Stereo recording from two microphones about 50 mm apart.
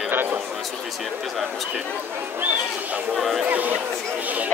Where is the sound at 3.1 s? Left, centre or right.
Centre.